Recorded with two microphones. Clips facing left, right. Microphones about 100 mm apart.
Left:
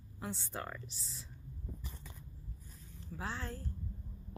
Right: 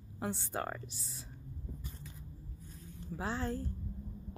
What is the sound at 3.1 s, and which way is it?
Speech, 15° right (ahead or behind).